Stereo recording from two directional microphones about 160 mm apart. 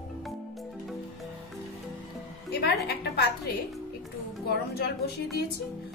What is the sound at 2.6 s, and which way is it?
Speech, 90° left.